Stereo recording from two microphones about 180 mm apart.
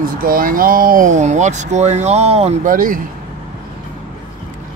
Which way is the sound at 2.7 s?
50° right (ahead or behind).